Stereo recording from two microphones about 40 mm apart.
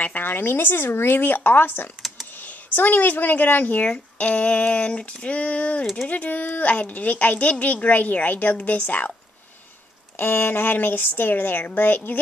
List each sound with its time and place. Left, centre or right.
0.0 s a woman's voice: left
2.0 s computer keyboard: centre
2.3 s speech: left
4.2 s a sound: left
6.0 s a woman's voice: left
10.1 s a woman's voice: left